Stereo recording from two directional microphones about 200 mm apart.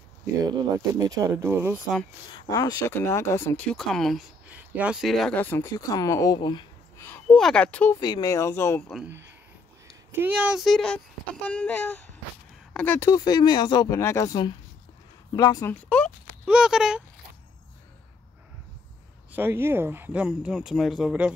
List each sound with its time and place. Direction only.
0.5 s speech: 20° right (ahead or behind)
2.3 s speech: 20° left (ahead or behind)
7.1 s speech: 5° left (ahead or behind)
8.0 s speech: 20° left (ahead or behind)
10.1 s speech: 10° right (ahead or behind); by 15.7 s 20° left (ahead or behind)
15.7 s speech: 5° left (ahead or behind)
19.3 s speech: 10° right (ahead or behind)